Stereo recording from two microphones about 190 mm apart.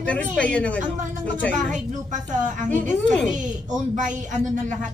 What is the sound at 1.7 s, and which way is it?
Speech, 40° right (ahead or behind).